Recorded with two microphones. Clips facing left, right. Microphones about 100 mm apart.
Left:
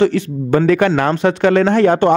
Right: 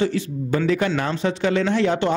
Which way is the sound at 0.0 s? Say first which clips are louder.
Left 7 dB; 60° left (ahead or behind).